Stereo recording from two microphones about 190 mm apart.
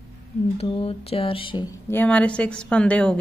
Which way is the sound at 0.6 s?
30° left (ahead or behind).